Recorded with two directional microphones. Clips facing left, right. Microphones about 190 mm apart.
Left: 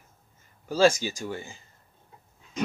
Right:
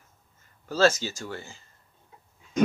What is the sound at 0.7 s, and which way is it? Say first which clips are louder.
Speech: left 1 dB; 15° left (ahead or behind).